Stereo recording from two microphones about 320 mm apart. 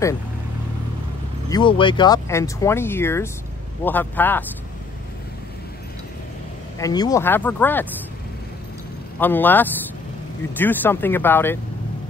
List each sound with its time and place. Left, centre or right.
1.5 s a man's voice: centre
6.8 s speech: centre
9.2 s a man's voice: centre